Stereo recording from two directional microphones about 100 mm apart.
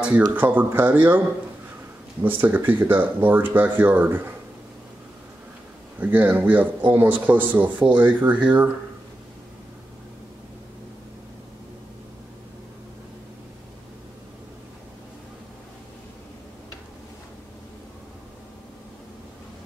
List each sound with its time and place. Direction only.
0.4 s speech: 20° right (ahead or behind)
2.2 s speech: 20° right (ahead or behind)
5.9 s speech: 20° right (ahead or behind)